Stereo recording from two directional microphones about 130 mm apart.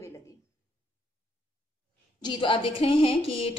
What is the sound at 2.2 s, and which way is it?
A woman's voice, 40° left (ahead or behind).